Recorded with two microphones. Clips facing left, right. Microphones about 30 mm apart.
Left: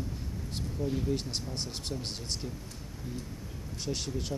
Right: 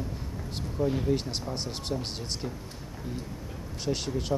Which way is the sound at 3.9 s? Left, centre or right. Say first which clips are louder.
Right 5 dB; centre.